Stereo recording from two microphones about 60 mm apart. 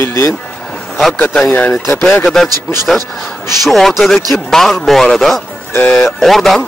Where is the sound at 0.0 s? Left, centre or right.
Left.